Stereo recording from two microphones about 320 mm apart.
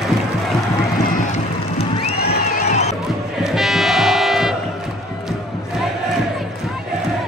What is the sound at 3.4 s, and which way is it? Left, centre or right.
Music, centre.